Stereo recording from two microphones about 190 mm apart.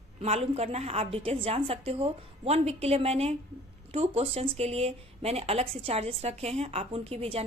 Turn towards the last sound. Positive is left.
turn(degrees=-30)  # may be behind; listen again after turning